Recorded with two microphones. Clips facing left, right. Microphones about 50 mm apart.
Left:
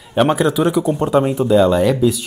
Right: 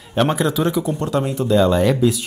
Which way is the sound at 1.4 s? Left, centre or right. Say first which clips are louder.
Even; centre.